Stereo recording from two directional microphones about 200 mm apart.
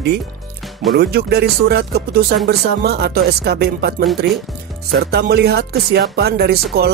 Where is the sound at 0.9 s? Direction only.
55° right (ahead or behind).